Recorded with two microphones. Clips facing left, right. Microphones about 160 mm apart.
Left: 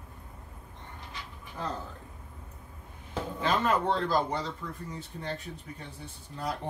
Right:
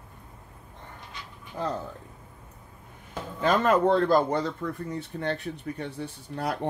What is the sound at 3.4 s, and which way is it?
Speech, 50° right (ahead or behind).